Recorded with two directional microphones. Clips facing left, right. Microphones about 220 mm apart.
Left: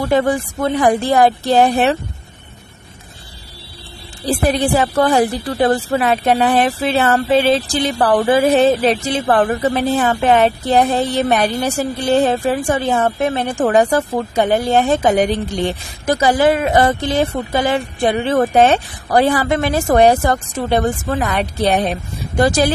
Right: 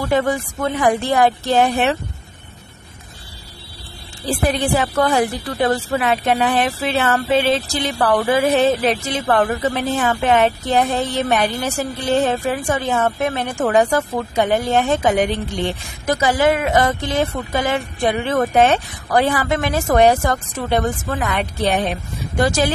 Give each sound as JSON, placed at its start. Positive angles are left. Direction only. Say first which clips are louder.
{"t": 0.0, "sound": "a woman's voice", "louder": "left 3 dB", "side_deg": 35}
{"t": 4.3, "sound": "a woman's voice", "louder": "left 3 dB", "side_deg": 40}